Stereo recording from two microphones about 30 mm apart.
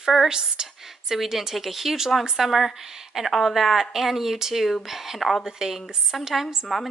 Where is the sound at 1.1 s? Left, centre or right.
Centre.